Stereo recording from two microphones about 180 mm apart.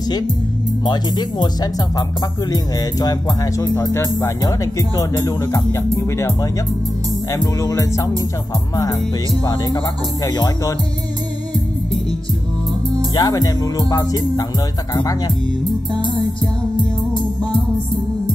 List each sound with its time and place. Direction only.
0.8 s speech: 25° left (ahead or behind)
9.4 s speech: 25° left (ahead or behind)
13.1 s speech: 20° left (ahead or behind)